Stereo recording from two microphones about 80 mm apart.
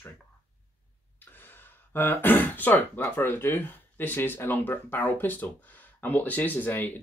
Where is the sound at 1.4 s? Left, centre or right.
Left.